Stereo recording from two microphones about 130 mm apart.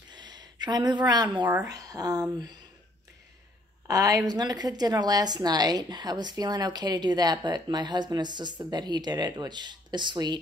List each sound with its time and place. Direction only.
0.1 s a sound: 35° right (ahead or behind)
1.6 s speech: 25° right (ahead or behind)
3.8 s a woman's voice: 25° right (ahead or behind)